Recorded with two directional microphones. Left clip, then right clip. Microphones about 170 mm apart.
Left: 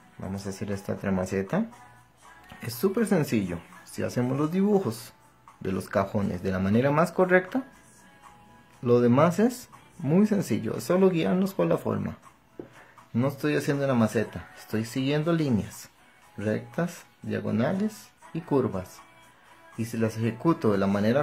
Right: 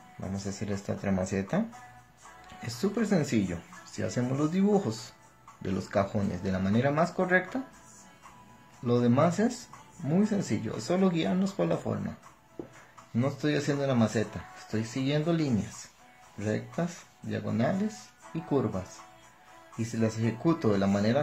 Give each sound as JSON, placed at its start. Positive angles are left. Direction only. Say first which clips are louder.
{"t": 0.2, "sound": "speech", "louder": "left 2 dB", "side_deg": 20}
{"t": 2.6, "sound": "speech", "louder": "left 5 dB", "side_deg": 25}
{"t": 8.8, "sound": "speech", "louder": "left 5 dB", "side_deg": 35}